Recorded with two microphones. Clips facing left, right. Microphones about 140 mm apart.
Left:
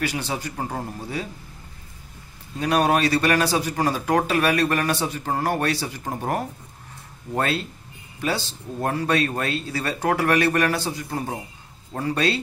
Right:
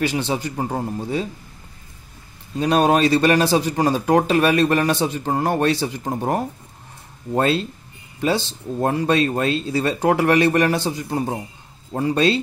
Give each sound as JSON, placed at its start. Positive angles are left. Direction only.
{"t": 0.0, "sound": "a man's voice", "side_deg": -25}
{"t": 2.6, "sound": "a man's voice", "side_deg": -25}